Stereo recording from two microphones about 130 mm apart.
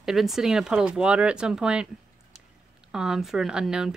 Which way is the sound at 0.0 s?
Centre (ahead or behind).